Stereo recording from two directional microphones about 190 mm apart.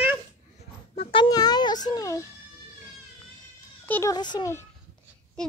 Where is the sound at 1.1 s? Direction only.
25° left (ahead or behind).